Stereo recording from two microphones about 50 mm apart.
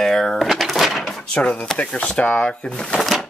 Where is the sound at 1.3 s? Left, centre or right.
Left.